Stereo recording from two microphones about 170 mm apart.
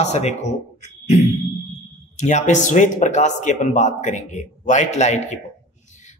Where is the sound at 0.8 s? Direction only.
45° left (ahead or behind).